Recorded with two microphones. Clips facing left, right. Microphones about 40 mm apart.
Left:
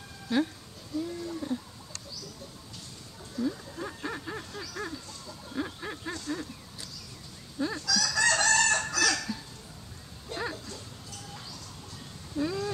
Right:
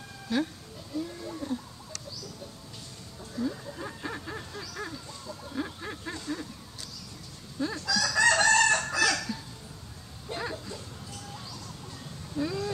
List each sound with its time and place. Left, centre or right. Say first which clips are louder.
0.3 s speech: left 1 dB; centre
0.9 s speech: left 2 dB; centre
3.3 s a sound: left 1 dB; centre
7.5 s fowl: even; centre
7.8 s chicken: right 3 dB; centre
8.5 s chicken: right 2 dB; centre
9.1 s fowl: right 1 dB; centre
10.3 s dog: even; centre
12.4 s a sound: even; centre